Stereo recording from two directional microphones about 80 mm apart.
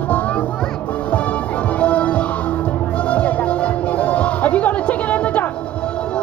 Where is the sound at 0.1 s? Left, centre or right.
Centre.